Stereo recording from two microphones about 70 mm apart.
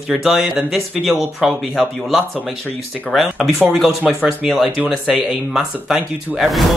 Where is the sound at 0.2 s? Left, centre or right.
Centre.